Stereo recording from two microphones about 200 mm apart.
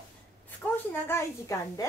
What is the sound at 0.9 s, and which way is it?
Speech, 15° left (ahead or behind).